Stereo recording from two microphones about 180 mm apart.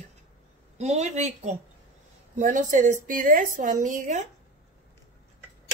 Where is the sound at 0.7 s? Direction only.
35° right (ahead or behind).